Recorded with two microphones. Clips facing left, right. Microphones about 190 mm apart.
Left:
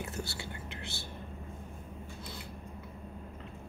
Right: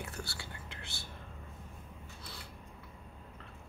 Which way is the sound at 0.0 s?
20° left (ahead or behind).